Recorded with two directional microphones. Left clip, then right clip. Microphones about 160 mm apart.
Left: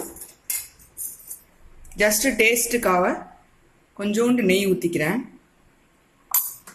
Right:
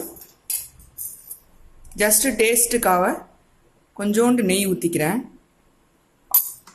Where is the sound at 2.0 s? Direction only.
25° right (ahead or behind).